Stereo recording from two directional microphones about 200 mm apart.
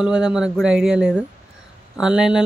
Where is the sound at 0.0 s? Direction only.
5° right (ahead or behind).